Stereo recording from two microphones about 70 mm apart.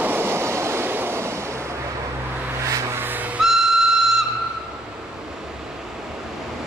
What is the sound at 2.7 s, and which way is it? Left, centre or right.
Vehicle, right.